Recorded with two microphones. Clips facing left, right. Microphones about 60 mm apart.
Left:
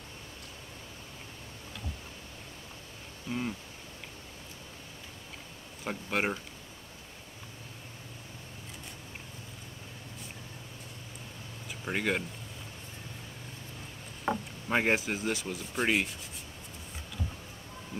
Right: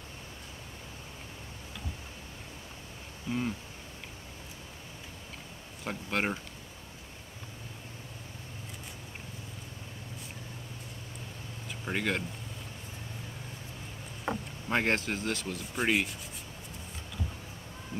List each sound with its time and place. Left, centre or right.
3.3 s speech: centre
5.9 s speech: centre
11.8 s speech: centre
14.3 s speech: centre